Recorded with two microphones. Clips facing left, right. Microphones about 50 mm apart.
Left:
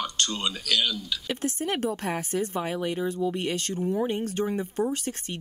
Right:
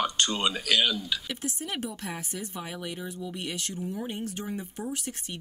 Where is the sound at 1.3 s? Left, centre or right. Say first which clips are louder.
Left 6 dB; left.